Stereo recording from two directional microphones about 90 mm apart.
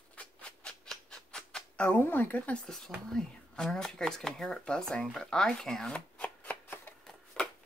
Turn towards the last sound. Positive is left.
turn(degrees=10)  # may be behind; listen again after turning